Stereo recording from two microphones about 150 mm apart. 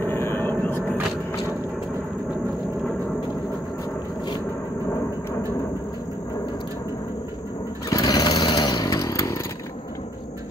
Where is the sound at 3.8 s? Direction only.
30° left (ahead or behind).